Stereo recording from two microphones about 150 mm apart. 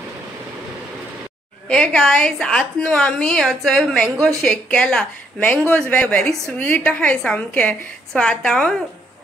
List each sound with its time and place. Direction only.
1.7 s a woman's voice: 5° left (ahead or behind)